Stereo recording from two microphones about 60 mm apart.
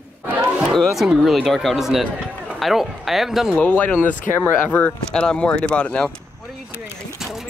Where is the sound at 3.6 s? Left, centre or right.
Left.